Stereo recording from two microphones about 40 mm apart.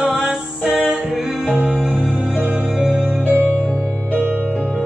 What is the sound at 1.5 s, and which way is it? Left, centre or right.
Music, right.